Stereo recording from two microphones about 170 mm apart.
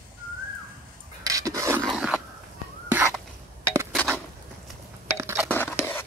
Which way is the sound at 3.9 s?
5° left (ahead or behind).